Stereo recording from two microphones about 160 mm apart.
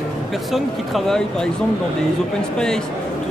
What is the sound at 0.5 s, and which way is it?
Speech, centre (ahead or behind).